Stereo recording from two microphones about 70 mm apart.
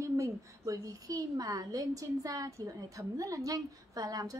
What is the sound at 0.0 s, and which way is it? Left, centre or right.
A woman's voice, right.